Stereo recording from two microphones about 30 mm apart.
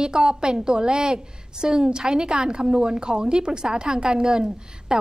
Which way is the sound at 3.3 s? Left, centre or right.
Right.